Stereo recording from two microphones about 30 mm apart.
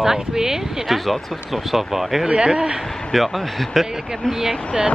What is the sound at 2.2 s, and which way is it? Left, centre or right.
Speech, right.